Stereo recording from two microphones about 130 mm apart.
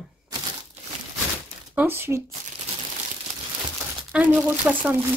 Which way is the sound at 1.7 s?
15° right (ahead or behind).